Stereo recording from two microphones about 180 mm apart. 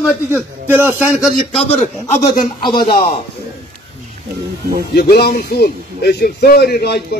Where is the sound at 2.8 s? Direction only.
55° left (ahead or behind).